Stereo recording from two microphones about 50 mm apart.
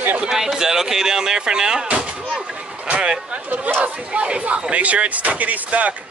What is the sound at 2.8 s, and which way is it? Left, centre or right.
Speech, right.